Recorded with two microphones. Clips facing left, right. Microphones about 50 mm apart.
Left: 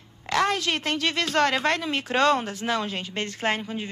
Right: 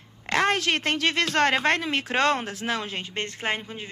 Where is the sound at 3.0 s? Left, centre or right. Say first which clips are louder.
Left 1 dB; right.